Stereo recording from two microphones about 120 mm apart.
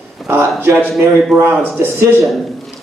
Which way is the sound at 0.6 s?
15° right (ahead or behind).